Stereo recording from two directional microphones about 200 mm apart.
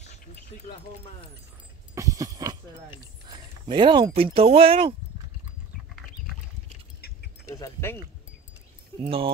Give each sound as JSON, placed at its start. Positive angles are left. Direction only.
{"t": 2.0, "sound": "a sound", "side_deg": -15}
{"t": 3.3, "sound": "speech", "side_deg": -20}
{"t": 7.4, "sound": "speech", "side_deg": 15}
{"t": 9.0, "sound": "speech", "side_deg": -25}